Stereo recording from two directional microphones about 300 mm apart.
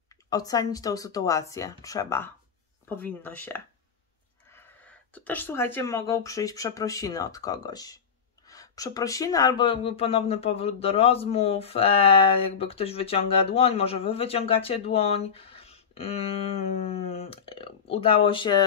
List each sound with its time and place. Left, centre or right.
0.3 s speech: centre